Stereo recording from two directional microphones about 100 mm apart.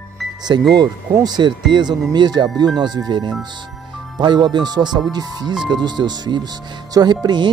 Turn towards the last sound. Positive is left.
turn(degrees=-45)  # may be behind; listen again after turning